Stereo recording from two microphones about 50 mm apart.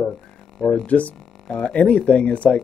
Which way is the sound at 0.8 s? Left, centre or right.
Left.